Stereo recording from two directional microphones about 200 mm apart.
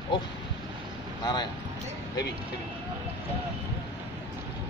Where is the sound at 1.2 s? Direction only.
20° left (ahead or behind).